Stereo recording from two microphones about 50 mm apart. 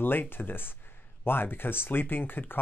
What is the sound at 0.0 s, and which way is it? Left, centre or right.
Speech, left.